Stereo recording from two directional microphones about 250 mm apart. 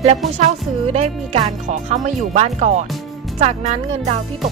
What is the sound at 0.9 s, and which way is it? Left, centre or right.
Speech, right.